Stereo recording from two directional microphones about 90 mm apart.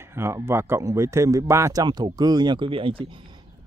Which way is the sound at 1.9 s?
55° right (ahead or behind).